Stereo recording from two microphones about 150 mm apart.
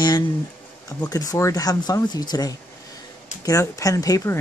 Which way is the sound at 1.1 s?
25° left (ahead or behind).